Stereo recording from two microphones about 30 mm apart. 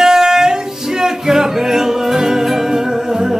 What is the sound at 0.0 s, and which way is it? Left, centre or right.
Music, centre.